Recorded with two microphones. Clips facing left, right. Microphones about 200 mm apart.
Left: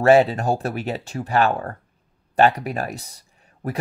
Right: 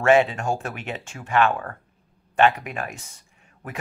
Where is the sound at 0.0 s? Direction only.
35° left (ahead or behind).